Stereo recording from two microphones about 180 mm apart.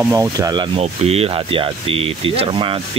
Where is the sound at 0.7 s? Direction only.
35° right (ahead or behind).